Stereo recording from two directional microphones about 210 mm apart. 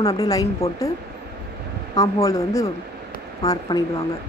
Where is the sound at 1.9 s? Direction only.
15° left (ahead or behind).